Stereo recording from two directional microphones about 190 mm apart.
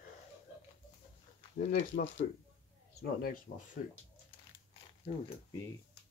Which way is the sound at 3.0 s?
50° left (ahead or behind).